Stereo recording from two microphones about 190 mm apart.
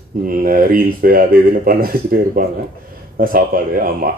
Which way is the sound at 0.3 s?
50° right (ahead or behind).